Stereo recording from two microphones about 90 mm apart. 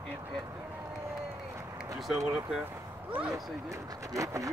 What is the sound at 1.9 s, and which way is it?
Speech, centre (ahead or behind).